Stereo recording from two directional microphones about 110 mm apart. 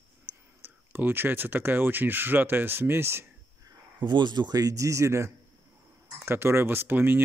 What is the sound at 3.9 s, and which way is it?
Speech, 45° right (ahead or behind).